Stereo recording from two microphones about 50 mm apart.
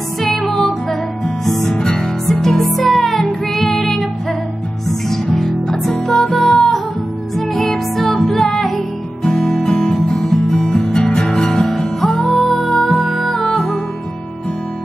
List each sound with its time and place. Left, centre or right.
0.2 s music: centre
9.2 s guitar: centre
10.2 s music: centre